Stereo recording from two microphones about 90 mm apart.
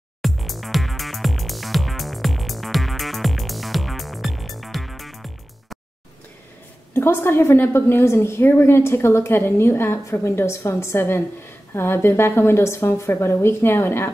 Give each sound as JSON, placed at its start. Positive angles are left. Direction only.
{"t": 0.2, "sound": "music", "side_deg": 0}
{"t": 7.0, "sound": "a woman's voice", "side_deg": 25}